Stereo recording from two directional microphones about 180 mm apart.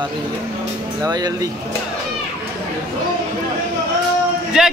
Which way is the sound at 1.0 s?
20° right (ahead or behind).